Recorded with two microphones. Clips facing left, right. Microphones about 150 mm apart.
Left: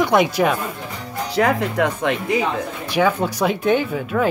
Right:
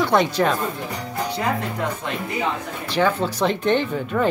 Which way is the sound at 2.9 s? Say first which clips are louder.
Left 2 dB; 10° left (ahead or behind).